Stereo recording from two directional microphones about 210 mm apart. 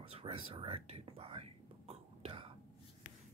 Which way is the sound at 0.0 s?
25° right (ahead or behind).